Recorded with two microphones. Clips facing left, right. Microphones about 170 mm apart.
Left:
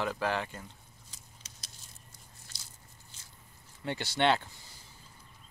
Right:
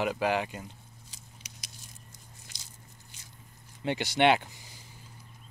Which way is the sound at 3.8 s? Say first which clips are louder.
Right 4 dB; 15° right (ahead or behind).